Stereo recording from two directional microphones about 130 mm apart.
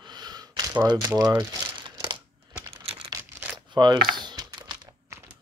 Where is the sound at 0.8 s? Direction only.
30° right (ahead or behind).